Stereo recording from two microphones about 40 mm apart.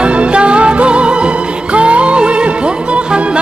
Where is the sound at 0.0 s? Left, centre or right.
Right.